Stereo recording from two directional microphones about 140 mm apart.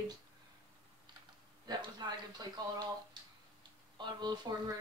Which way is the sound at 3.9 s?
30° right (ahead or behind).